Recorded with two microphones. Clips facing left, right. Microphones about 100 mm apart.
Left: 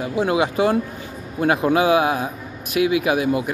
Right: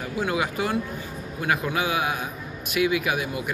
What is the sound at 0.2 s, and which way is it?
Speech, 25° left (ahead or behind).